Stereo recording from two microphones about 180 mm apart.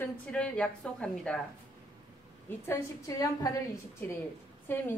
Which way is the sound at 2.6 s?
20° left (ahead or behind).